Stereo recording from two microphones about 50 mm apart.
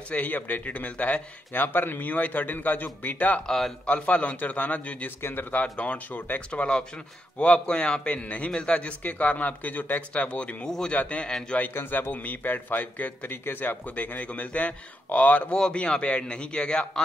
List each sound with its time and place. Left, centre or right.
0.1 s a man's voice: left
1.6 s a man's voice: left
3.4 s speech: centre
3.8 s a man's voice: left
5.2 s a man's voice: left
5.6 s a man's voice: left
6.5 s a man's voice: left
10.1 s a man's voice: left
11.7 s a man's voice: left
12.1 s a man's voice: left